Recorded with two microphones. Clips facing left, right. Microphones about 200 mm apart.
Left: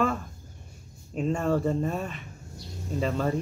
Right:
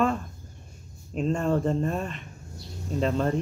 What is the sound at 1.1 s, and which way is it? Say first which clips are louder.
Speech: right 1 dB; 15° left (ahead or behind).